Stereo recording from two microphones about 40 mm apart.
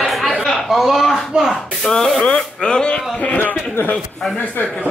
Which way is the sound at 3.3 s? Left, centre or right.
Left.